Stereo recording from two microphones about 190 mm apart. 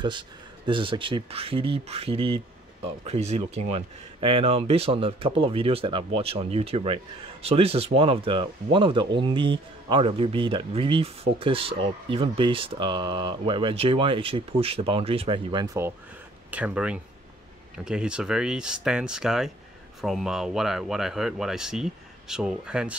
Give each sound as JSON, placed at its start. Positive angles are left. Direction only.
{"t": 0.7, "sound": "speech", "side_deg": -25}
{"t": 16.4, "sound": "speech", "side_deg": -5}